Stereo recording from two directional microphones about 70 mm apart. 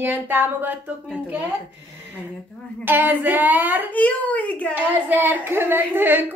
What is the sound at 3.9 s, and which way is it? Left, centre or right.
Speech, left.